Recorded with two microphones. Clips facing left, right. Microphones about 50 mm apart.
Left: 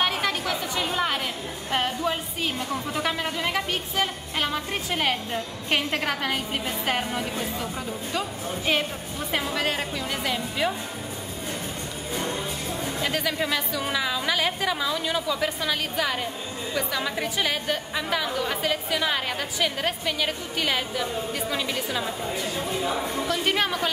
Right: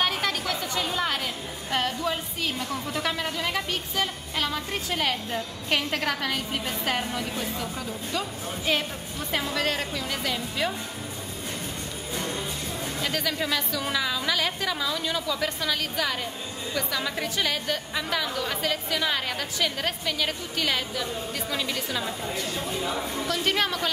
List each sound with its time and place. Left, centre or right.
0.0 s chatter: centre
1.7 s a woman's voice: left
13.0 s a woman's voice: centre